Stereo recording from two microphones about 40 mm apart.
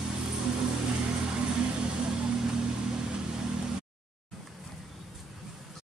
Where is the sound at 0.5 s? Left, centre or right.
Right.